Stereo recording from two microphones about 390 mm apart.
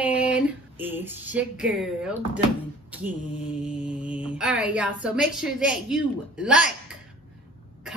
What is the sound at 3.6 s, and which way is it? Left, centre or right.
Speech, centre.